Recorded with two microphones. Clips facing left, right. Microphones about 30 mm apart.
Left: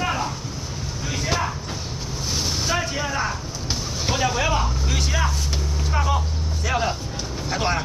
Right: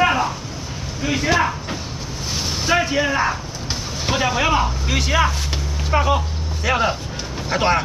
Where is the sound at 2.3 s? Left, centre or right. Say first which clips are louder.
Right 5 dB; right.